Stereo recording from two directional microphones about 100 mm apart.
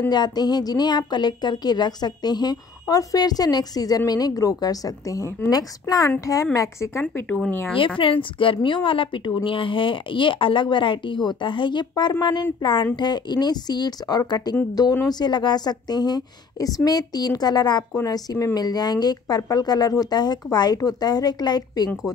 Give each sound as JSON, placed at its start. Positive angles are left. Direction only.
{"t": 0.1, "sound": "a woman's voice", "side_deg": 45}
{"t": 7.0, "sound": "speech", "side_deg": 15}
{"t": 8.0, "sound": "a woman's voice", "side_deg": 60}